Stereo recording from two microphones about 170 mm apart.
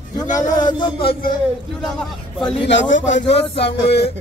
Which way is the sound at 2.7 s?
90° left.